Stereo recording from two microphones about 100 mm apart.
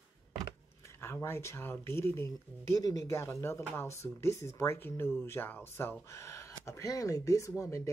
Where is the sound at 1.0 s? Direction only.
25° left (ahead or behind).